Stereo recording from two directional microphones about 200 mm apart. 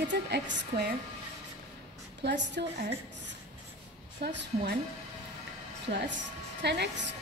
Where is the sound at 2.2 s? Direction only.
55° right (ahead or behind).